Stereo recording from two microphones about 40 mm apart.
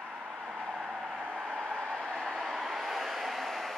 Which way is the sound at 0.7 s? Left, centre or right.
Right.